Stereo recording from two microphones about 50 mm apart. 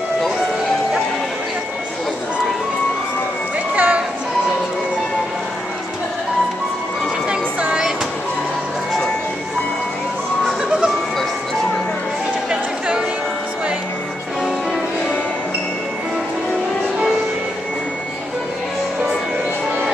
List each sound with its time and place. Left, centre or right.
3.7 s music: right
7.2 s a sound: right
12.4 s chatter: centre